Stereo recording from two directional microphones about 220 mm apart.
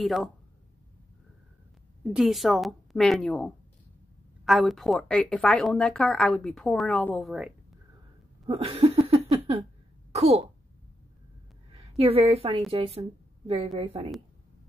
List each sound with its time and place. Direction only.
0.0 s speech: centre (ahead or behind)
2.0 s speech: centre (ahead or behind)
8.5 s a sound: 25° right (ahead or behind)
10.1 s a woman's voice: 25° right (ahead or behind)
11.7 s a woman's voice: 25° right (ahead or behind)